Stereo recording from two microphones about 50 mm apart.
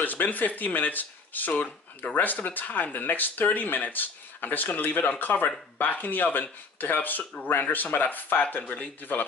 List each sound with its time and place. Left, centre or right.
0.0 s speech: left